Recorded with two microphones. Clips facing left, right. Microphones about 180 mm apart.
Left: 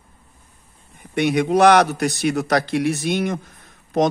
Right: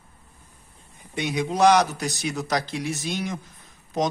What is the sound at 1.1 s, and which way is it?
A man's voice, 65° left (ahead or behind).